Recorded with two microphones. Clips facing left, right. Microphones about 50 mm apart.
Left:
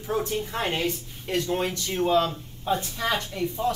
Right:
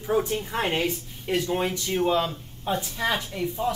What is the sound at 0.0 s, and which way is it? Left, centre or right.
Speech, centre.